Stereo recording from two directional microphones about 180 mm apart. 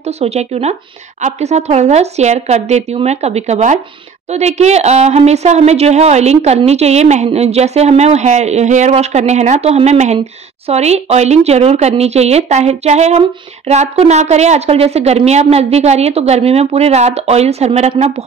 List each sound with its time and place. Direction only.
0.0 s a woman's voice: 35° right (ahead or behind)